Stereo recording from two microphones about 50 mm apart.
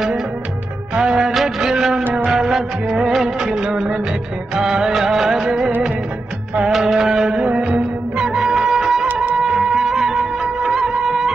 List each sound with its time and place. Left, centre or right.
0.9 s music: centre
2.1 s music of bollywood: centre
4.6 s music: centre
6.7 s music: centre
9.0 s music: right
9.4 s music: centre
10.4 s music of bollywood: centre